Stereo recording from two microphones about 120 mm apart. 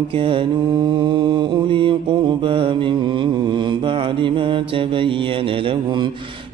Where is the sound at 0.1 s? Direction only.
45° right (ahead or behind).